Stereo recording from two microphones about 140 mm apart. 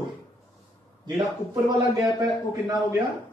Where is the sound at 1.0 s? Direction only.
30° right (ahead or behind).